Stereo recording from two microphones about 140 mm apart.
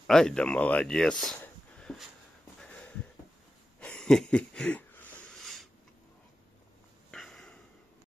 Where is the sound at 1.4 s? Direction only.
5° left (ahead or behind).